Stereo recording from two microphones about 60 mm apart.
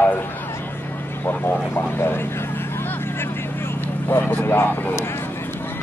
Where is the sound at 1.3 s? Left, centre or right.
Left.